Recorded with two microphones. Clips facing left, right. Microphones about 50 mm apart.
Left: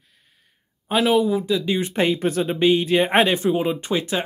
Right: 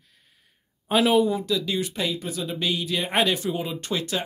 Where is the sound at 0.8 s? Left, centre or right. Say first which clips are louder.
Left 1 dB; centre.